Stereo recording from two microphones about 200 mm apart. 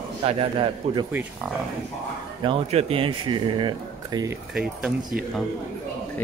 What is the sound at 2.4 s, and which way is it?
Speech, 30° right (ahead or behind).